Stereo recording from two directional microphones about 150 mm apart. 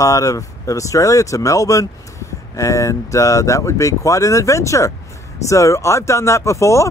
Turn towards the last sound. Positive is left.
turn(degrees=20)  # may be behind; listen again after turning